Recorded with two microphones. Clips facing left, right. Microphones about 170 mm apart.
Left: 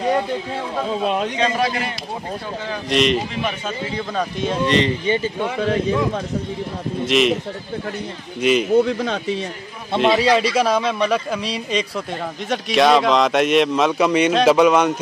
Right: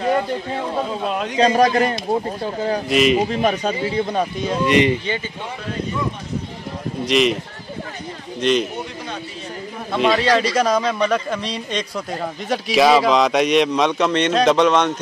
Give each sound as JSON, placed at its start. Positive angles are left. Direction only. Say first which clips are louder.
{"t": 1.3, "sound": "a man's voice", "louder": "right 5 dB", "side_deg": -35}
{"t": 2.9, "sound": "a man's voice", "louder": "right 1 dB", "side_deg": -5}
{"t": 3.3, "sound": "speech", "louder": "right 6 dB", "side_deg": -40}
{"t": 4.6, "sound": "speech", "louder": "right 3 dB", "side_deg": -15}
{"t": 5.6, "sound": "speech", "louder": "left 8 dB", "side_deg": 90}
{"t": 7.1, "sound": "a man's voice", "louder": "even", "side_deg": 0}
{"t": 8.4, "sound": "a man's voice", "louder": "left 1 dB", "side_deg": 5}
{"t": 8.8, "sound": "speech", "louder": "left 9 dB", "side_deg": 90}
{"t": 10.1, "sound": "a man's voice", "louder": "left 1 dB", "side_deg": 10}